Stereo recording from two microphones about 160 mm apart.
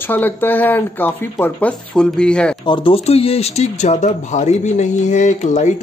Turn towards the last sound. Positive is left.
turn(degrees=50)  # may be behind; listen again after turning